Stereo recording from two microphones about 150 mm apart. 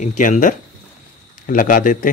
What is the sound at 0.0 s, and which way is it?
Speech, 55° left (ahead or behind).